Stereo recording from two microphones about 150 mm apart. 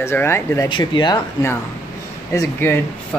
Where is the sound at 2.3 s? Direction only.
20° left (ahead or behind).